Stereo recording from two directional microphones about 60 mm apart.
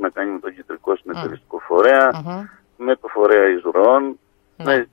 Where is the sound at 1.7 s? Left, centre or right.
Right.